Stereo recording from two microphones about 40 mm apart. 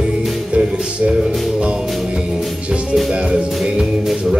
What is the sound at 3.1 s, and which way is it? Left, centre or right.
Music, right.